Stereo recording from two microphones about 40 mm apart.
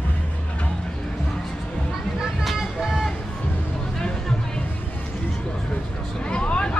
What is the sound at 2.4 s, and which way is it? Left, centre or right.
Vehicle, centre.